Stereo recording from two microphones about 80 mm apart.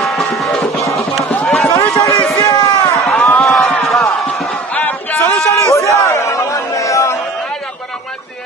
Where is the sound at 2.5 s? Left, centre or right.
Left.